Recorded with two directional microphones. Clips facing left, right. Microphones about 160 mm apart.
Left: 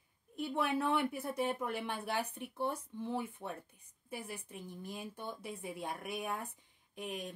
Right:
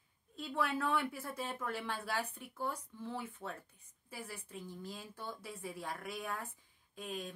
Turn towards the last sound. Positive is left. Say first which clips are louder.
# left 1 dB
turn(degrees=20)  # may be behind; listen again after turning